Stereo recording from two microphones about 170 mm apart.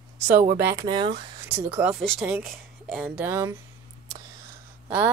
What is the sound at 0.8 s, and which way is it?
Speech, 30° right (ahead or behind).